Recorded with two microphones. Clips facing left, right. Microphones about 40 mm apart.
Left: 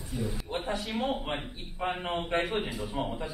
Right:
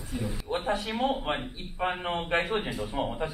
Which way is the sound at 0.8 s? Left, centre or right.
Centre.